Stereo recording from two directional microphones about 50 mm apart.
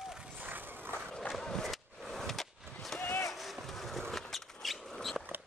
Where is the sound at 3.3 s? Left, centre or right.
Centre.